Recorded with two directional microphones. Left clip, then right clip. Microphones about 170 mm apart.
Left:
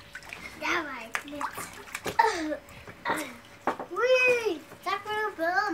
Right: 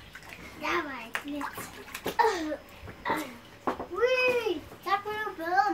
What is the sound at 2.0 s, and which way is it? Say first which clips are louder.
Bathtub: left 2 dB; centre (ahead or behind).